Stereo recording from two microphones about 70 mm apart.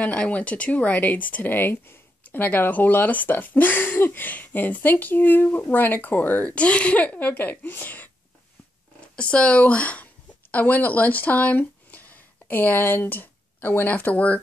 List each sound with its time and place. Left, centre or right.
0.0 s speech: left
9.1 s speech: centre